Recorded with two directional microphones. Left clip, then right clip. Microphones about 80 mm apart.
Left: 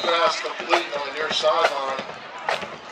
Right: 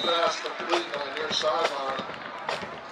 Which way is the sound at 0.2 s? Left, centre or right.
Left.